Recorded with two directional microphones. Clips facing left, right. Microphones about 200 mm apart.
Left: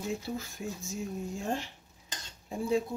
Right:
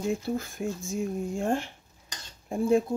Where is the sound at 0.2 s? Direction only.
55° right (ahead or behind).